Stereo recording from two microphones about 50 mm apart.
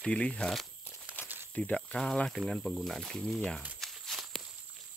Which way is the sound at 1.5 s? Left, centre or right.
Left.